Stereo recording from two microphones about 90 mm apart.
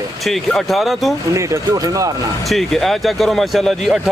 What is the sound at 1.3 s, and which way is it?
Speech, 35° right (ahead or behind).